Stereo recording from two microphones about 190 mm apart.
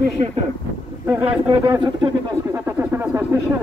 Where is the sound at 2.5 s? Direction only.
10° right (ahead or behind).